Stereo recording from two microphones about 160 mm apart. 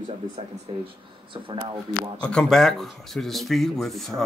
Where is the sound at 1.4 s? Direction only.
35° right (ahead or behind).